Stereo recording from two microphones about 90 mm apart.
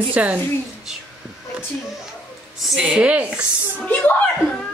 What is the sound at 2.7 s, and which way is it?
Speech, 10° right (ahead or behind).